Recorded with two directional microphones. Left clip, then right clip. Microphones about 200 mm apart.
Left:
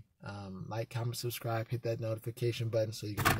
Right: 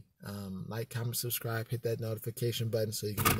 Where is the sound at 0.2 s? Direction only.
5° right (ahead or behind).